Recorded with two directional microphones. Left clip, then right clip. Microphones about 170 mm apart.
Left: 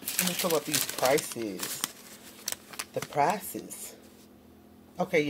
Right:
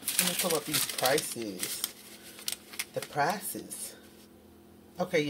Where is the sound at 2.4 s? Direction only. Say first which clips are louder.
Even; 55° left (ahead or behind).